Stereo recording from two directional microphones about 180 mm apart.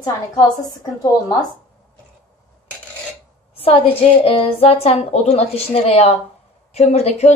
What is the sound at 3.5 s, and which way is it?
A woman's voice, 35° left (ahead or behind).